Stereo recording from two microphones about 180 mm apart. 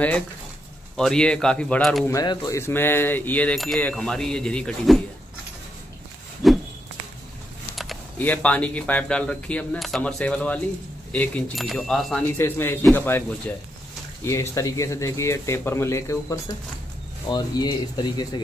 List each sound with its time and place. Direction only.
0.9 s speech: 5° left (ahead or behind)
2.0 s speech: 20° left (ahead or behind); by 5.0 s 5° left (ahead or behind)
6.4 s a sound: centre (ahead or behind)
7.7 s speech: centre (ahead or behind)
12.4 s speech: 10° left (ahead or behind)
14.2 s speech: 15° left (ahead or behind)